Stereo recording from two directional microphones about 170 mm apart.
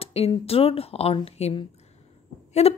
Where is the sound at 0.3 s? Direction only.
35° left (ahead or behind).